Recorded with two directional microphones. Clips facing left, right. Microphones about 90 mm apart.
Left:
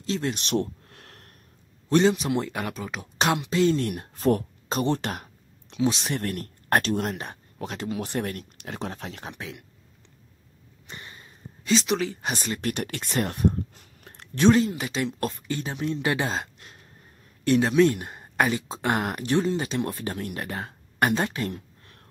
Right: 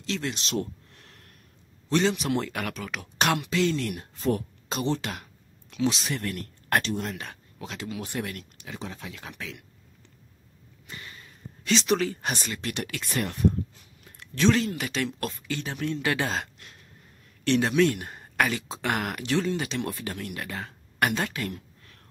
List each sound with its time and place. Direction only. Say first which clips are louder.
0.0 s speech: left 3 dB; 35° left (ahead or behind)
0.8 s a sound: left 4 dB; 50° left (ahead or behind)
2.0 s speech: left 4 dB; 25° left (ahead or behind); by 4.5 s 50° left (ahead or behind)
4.6 s a sound: left 3 dB; 45° left (ahead or behind)
6.0 s speech: left 2 dB; 45° left (ahead or behind)
8.5 s speech: left 4 dB; 55° left (ahead or behind)
9.2 s speech: left 2 dB; 25° left (ahead or behind)
10.9 s a sound: even; 25° left (ahead or behind)
11.7 s speech: even; 10° left (ahead or behind)
12.6 s speech: left 3 dB; 45° left (ahead or behind)
14.4 s speech: left 4 dB; 25° left (ahead or behind)
17.5 s speech: left 3 dB; 5° left (ahead or behind)
17.8 s speech: left 3 dB; 25° left (ahead or behind)
18.7 s speech: left 3 dB; 35° left (ahead or behind)